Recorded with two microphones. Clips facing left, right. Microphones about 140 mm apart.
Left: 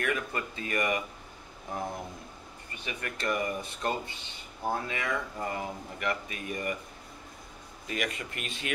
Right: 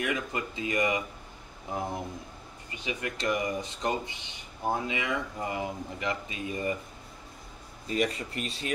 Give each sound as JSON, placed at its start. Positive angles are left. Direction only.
{"t": 0.0, "sound": "speech", "side_deg": -15}
{"t": 2.7, "sound": "speech", "side_deg": -15}
{"t": 7.9, "sound": "speech", "side_deg": -35}